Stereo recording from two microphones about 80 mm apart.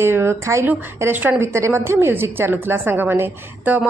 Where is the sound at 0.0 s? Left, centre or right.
Right.